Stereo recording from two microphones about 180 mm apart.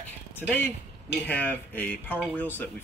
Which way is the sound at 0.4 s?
10° left (ahead or behind).